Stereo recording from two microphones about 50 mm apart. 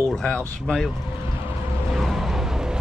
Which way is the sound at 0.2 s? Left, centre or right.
Centre.